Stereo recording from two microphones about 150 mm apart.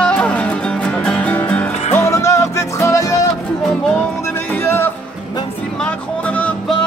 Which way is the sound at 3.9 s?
10° left (ahead or behind).